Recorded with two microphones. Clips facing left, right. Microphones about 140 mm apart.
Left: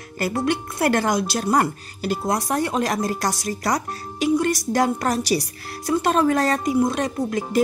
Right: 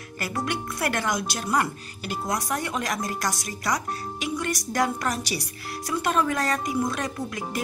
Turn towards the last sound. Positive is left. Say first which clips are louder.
# left 7 dB
turn(degrees=25)  # may be behind; listen again after turning